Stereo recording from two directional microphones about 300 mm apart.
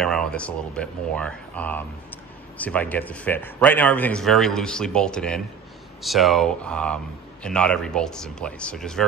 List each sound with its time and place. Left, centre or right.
0.0 s speech: centre